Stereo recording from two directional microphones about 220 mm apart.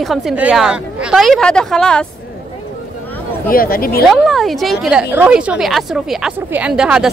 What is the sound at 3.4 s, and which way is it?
Speech, 40° left (ahead or behind).